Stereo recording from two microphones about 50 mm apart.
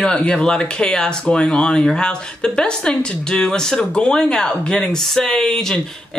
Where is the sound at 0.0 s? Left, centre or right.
Centre.